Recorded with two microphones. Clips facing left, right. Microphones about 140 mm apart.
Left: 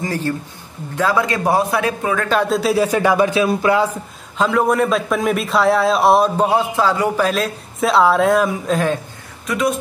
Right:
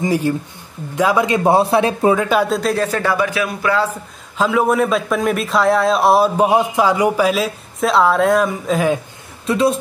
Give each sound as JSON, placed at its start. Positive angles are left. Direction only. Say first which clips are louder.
{"t": 0.0, "sound": "a man's voice", "louder": "right 4 dB", "side_deg": -15}
{"t": 2.2, "sound": "a man's voice", "louder": "even", "side_deg": -5}
{"t": 3.2, "sound": "speech", "louder": "left 4 dB", "side_deg": 25}
{"t": 4.4, "sound": "a man's voice", "louder": "right 1 dB", "side_deg": 0}
{"t": 9.5, "sound": "a man's voice", "louder": "right 3 dB", "side_deg": -30}